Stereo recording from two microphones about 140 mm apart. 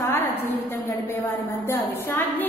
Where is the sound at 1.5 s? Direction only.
15° left (ahead or behind).